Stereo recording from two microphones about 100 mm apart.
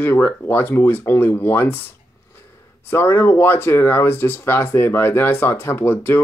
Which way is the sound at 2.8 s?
25° left (ahead or behind).